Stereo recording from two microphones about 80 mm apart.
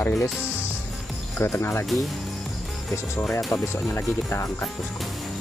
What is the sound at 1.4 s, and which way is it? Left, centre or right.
Speech, left.